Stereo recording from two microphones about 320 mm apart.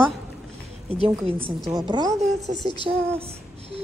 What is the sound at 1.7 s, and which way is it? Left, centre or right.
Speech, centre.